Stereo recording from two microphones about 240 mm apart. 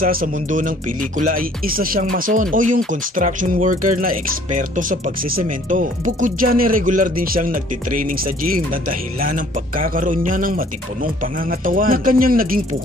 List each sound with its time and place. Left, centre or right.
0.0 s speech: right
11.6 s speech: right